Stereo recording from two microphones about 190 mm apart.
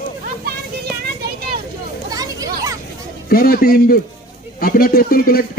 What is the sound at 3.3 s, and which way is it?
A man's voice, 50° left (ahead or behind).